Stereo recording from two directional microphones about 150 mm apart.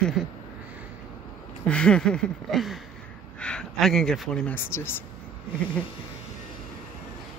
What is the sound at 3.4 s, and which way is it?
Speech, 5° left (ahead or behind).